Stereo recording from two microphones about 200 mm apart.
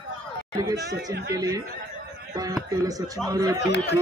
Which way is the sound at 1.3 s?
15° right (ahead or behind).